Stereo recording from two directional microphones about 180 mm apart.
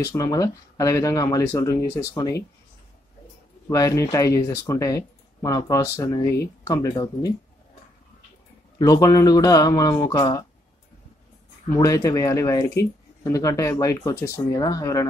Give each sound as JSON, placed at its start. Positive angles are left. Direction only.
{"t": 0.1, "sound": "speech", "side_deg": 20}
{"t": 3.6, "sound": "speech", "side_deg": 20}
{"t": 8.7, "sound": "speech", "side_deg": 20}
{"t": 11.8, "sound": "speech", "side_deg": 20}